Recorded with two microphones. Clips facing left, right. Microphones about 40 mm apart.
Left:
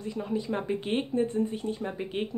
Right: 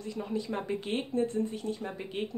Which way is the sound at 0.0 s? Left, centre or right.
Centre.